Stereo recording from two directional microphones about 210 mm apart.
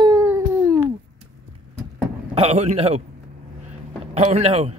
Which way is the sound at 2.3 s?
30° right (ahead or behind).